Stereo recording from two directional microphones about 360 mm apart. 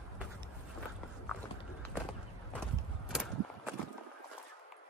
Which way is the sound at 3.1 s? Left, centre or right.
Centre.